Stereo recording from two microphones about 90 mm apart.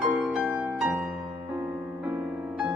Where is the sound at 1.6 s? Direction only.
20° right (ahead or behind).